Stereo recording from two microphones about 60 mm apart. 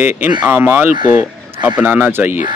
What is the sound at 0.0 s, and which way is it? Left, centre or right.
A man's voice, right.